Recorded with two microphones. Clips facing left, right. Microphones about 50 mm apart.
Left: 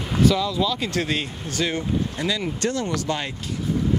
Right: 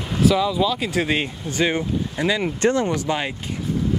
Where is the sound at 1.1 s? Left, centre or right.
Right.